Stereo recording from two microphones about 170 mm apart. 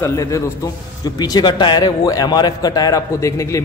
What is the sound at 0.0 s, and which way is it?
A man's voice, 20° left (ahead or behind).